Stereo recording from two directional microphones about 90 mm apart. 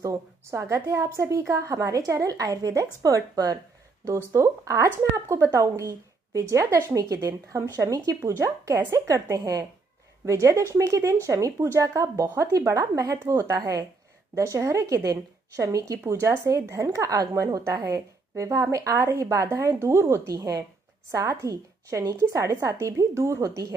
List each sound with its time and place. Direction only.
0.0 s speech: 30° right (ahead or behind)